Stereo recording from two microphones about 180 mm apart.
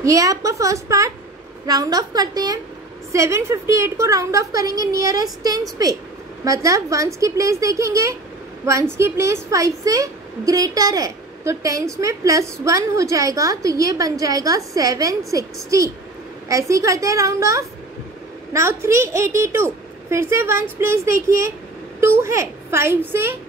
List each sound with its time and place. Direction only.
0.0 s a woman's voice: 20° right (ahead or behind)